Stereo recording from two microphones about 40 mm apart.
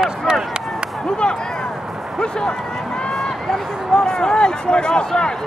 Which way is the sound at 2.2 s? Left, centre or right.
Centre.